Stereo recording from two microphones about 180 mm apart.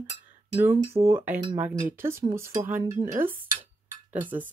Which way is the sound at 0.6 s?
15° right (ahead or behind).